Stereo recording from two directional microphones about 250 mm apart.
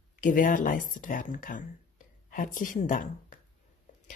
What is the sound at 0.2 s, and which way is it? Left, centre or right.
Speech, left.